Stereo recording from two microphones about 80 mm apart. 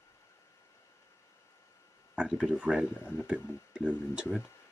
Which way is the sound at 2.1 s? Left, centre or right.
Centre.